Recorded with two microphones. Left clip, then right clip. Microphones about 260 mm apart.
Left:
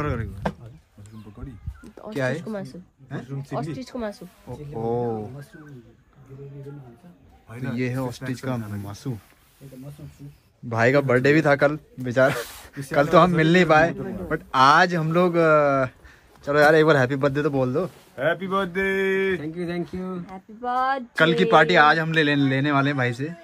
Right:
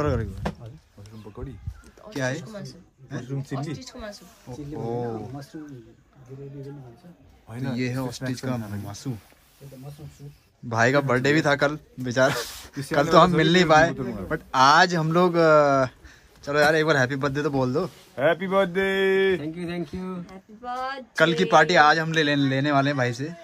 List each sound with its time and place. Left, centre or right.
0.0 s speech: centre
2.1 s a man's voice: centre
3.5 s speech: left
4.5 s speech: centre
7.4 s a man's voice: right
7.7 s a man's voice: centre
10.7 s a man's voice: centre
18.1 s speech: right
19.4 s a man's voice: centre
20.6 s speech: centre
21.1 s a man's voice: centre